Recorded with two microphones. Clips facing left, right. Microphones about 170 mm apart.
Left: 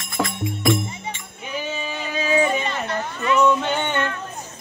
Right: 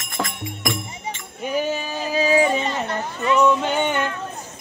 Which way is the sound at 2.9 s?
30° right (ahead or behind).